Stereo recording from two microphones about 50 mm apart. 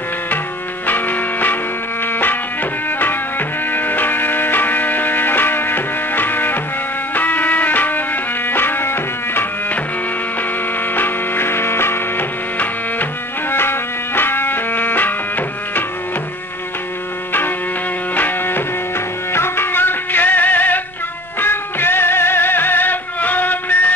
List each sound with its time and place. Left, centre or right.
0.8 s music: left
3.0 s music: left
11.0 s music: left
13.5 s music: left
18.1 s music: left
19.3 s music: left